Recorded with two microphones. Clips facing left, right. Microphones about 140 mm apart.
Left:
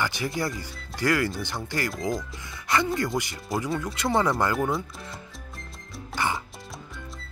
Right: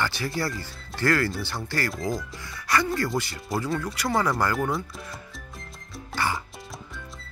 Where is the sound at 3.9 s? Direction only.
20° left (ahead or behind).